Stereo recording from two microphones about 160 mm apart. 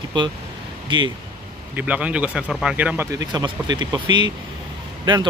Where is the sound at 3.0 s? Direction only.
25° right (ahead or behind).